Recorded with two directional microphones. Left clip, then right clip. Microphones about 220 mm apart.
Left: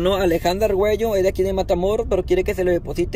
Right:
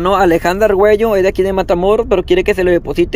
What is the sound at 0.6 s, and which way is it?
Speech, 35° right (ahead or behind).